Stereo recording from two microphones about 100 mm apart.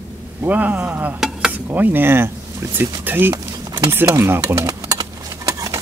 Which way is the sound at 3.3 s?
40° right (ahead or behind).